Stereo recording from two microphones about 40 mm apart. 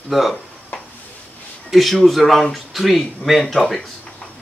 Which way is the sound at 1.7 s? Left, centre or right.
Centre.